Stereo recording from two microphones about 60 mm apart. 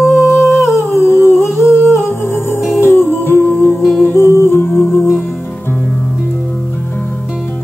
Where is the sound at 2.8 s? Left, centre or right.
Left.